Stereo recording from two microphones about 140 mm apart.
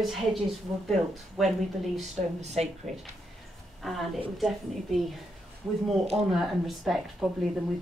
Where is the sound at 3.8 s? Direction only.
Centre (ahead or behind).